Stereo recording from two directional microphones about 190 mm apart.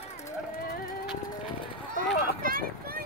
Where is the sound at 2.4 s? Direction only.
50° right (ahead or behind).